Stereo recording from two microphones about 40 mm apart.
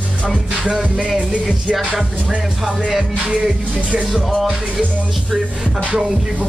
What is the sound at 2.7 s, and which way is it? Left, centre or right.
Music, centre.